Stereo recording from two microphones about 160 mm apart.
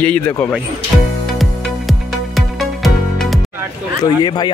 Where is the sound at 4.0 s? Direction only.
25° left (ahead or behind).